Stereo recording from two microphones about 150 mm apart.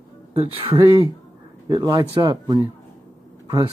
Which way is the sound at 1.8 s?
25° right (ahead or behind).